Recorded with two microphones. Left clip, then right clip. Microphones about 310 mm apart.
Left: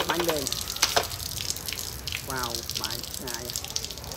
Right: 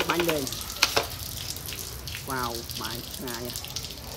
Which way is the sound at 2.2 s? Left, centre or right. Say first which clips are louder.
Right 3 dB; right.